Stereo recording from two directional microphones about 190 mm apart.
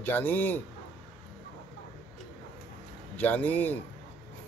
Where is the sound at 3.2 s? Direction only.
10° left (ahead or behind).